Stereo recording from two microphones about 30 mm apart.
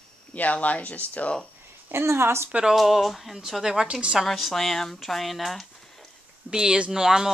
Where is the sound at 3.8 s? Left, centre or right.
Right.